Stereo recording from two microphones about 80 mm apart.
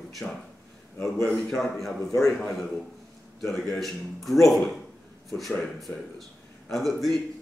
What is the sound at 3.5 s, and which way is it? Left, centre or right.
A man's voice, centre.